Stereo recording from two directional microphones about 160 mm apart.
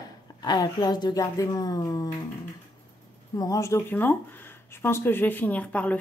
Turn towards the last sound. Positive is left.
turn(degrees=10)  # may be behind; listen again after turning